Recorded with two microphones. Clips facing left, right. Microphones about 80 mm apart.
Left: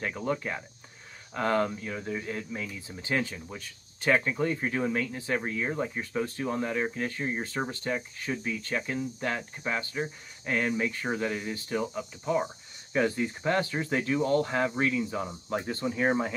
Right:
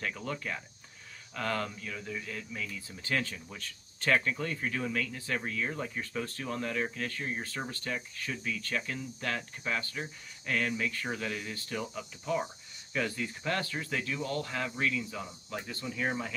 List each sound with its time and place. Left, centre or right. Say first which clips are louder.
0.0 s speech: left 6 dB; left